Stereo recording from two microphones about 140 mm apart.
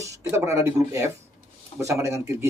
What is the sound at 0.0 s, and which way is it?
A man's voice, 20° right (ahead or behind).